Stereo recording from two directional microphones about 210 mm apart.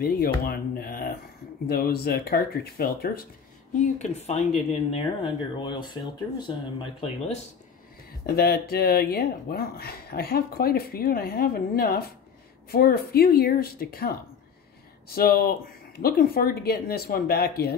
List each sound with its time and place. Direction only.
0.0 s speech: 45° left (ahead or behind)
3.8 s speech: 30° left (ahead or behind)
8.4 s speech: 50° left (ahead or behind)